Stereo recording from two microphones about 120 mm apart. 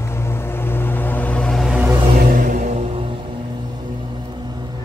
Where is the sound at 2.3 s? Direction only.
85° right.